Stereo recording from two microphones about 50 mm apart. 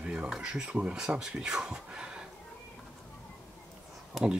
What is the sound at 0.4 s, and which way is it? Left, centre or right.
Speech, centre.